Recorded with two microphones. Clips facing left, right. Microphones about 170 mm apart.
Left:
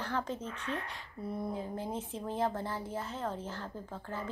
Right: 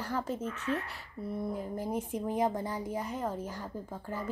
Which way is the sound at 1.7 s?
10° right (ahead or behind).